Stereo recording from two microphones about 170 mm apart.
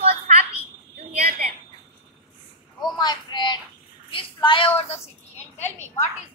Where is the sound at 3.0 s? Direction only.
25° left (ahead or behind).